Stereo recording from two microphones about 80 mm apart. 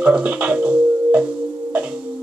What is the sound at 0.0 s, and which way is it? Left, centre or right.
Speech, centre.